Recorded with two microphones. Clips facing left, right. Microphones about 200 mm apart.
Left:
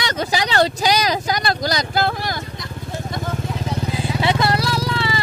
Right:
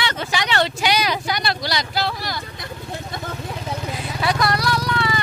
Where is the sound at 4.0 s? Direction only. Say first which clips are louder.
Left 2 dB; 25° left (ahead or behind).